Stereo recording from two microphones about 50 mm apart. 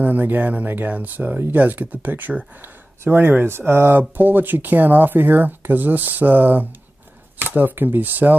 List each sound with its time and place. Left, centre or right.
0.0 s speech: right
4.2 s speech: right